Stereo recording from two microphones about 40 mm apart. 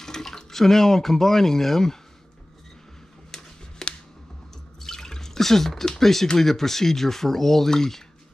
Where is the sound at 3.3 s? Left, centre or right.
Centre.